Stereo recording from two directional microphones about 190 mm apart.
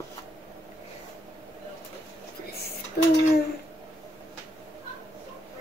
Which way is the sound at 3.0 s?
55° left (ahead or behind).